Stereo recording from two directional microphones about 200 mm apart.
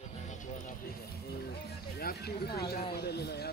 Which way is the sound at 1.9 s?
50° left (ahead or behind).